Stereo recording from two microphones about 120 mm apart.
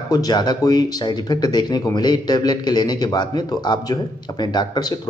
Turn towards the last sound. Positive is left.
turn(degrees=35)  # may be behind; listen again after turning